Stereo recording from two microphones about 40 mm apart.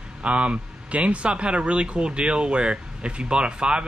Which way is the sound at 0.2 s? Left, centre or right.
Right.